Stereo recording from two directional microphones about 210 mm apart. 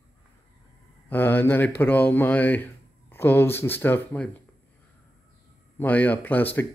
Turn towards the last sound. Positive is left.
turn(degrees=10)  # may be behind; listen again after turning